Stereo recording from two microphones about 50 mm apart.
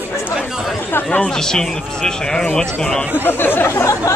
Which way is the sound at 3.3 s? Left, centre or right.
Left.